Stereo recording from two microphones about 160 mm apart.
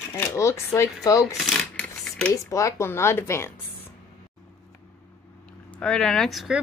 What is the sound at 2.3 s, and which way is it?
Speech, 20° left (ahead or behind).